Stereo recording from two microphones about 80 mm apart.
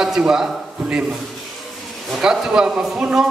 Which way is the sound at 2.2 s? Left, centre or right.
Centre.